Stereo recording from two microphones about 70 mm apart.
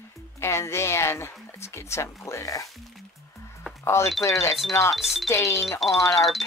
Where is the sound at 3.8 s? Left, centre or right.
Left.